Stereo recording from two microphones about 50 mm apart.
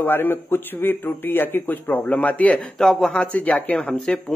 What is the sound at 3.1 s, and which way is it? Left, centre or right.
Speech, left.